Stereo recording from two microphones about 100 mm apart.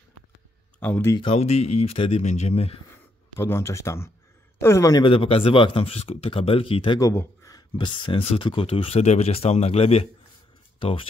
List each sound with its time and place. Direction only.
0.7 s speech: 15° left (ahead or behind)
1.2 s speech: 90° left
3.3 s speech: 25° left (ahead or behind)
5.0 s speech: 65° left (ahead or behind); by 10.0 s 90° left
10.8 s speech: 65° left (ahead or behind)